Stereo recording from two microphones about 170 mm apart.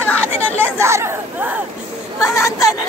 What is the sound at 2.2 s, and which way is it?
Speech, 15° left (ahead or behind).